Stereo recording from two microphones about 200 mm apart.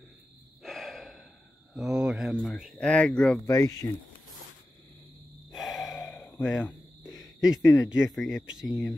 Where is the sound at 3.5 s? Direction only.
15° left (ahead or behind).